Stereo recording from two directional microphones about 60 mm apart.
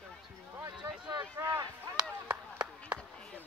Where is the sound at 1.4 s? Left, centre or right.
Right.